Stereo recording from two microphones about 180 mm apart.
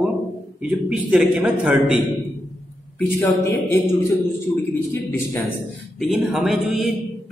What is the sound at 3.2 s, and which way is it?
Speech, 15° left (ahead or behind).